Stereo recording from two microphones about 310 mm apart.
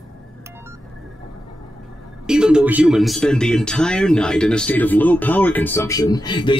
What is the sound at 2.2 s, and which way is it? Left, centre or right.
Speech, centre.